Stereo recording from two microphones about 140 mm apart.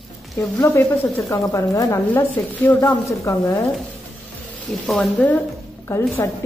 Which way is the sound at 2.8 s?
25° left (ahead or behind).